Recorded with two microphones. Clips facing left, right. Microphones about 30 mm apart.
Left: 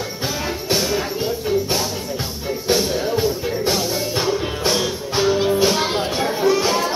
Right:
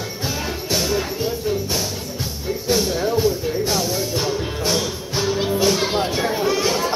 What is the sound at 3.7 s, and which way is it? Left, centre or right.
Music, centre.